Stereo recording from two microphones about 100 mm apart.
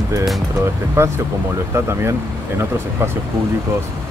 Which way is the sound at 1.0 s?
25° right (ahead or behind).